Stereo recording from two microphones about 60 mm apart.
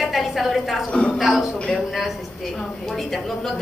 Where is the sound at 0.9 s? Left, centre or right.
Centre.